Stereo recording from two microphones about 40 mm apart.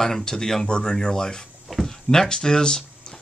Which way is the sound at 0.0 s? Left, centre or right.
Centre.